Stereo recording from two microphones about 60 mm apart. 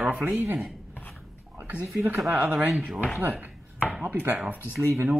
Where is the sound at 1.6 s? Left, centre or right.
Right.